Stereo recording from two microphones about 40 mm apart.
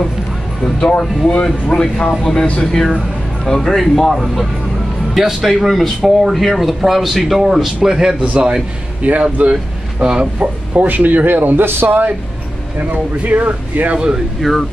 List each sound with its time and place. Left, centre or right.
1.4 s speech: left
2.6 s speech: centre
7.9 s a man's voice: centre
8.2 s a man's voice: right
10.0 s speech: right
10.4 s speech: right
13.2 s speech: right
13.9 s speech: right
14.4 s speech: centre